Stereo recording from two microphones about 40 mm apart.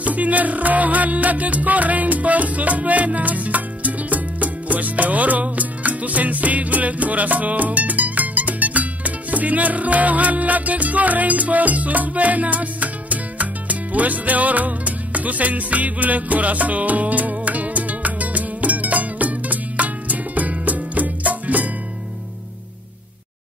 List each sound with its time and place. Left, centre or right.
0.0 s music: right